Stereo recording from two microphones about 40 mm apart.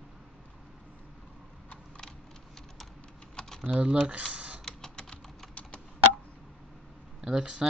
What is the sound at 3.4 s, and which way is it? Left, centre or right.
Typing, centre.